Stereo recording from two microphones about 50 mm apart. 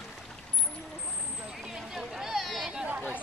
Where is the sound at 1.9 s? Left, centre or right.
Centre.